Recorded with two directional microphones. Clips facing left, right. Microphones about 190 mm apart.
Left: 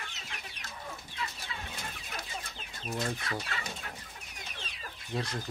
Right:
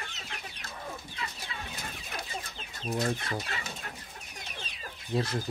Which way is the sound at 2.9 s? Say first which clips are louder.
Right 4 dB; 15° right (ahead or behind).